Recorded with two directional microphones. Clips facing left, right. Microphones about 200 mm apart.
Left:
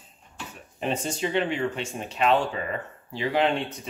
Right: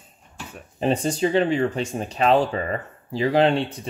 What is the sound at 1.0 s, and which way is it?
Speech, 35° right (ahead or behind).